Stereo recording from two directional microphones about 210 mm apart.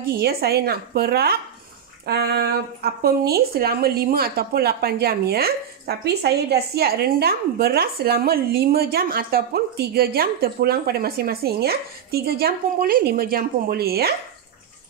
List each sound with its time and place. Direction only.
0.0 s speech: 50° right (ahead or behind)